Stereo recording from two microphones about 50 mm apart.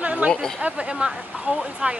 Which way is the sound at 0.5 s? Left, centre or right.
Right.